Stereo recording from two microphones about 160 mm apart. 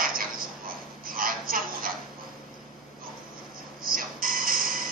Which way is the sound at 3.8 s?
60° right (ahead or behind).